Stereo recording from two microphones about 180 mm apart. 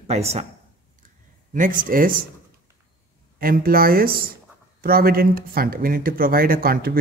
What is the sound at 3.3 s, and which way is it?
Speech, 55° right (ahead or behind).